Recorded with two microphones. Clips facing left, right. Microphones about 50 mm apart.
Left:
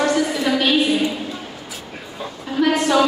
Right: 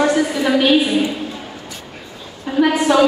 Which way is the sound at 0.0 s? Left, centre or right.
Centre.